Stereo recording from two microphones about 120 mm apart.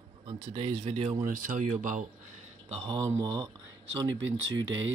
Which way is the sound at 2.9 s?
30° right (ahead or behind).